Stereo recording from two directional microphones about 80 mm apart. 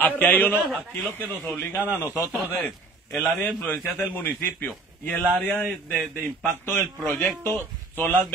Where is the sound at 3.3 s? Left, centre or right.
Left.